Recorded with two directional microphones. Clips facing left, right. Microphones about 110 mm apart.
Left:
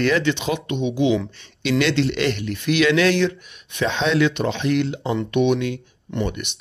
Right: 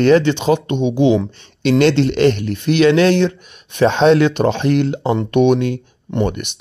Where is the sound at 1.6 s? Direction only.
45° right (ahead or behind).